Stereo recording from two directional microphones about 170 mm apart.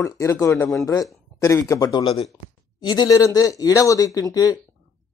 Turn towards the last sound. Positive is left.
turn(degrees=20)  # may be behind; listen again after turning